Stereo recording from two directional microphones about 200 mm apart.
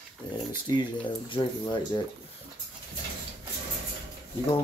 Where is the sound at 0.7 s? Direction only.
25° left (ahead or behind).